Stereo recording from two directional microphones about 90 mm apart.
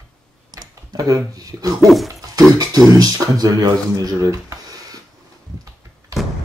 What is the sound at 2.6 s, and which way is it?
Speech, 45° right (ahead or behind).